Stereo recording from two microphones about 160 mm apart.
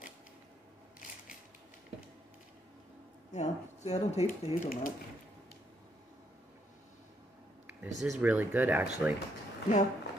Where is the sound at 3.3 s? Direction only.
45° left (ahead or behind).